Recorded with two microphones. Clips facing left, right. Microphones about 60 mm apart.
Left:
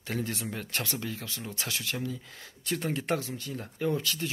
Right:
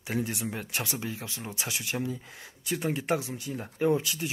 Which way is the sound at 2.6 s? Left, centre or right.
Centre.